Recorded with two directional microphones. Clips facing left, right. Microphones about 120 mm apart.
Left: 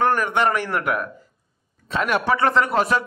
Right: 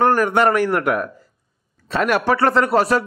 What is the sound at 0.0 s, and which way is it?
A man's voice, 40° right (ahead or behind).